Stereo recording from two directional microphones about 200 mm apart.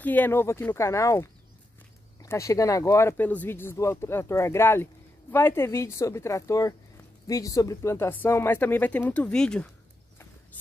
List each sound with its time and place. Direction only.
0.0 s speech: 10° left (ahead or behind)